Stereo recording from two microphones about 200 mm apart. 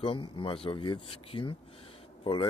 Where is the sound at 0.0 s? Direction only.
25° left (ahead or behind).